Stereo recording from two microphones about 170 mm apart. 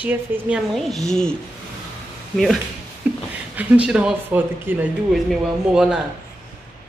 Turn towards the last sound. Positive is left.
turn(degrees=-5)  # may be behind; listen again after turning